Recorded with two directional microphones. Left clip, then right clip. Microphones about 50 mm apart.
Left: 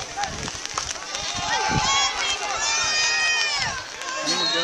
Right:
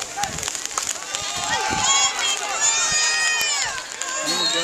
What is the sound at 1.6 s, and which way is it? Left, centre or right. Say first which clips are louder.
Run: right 2 dB; centre.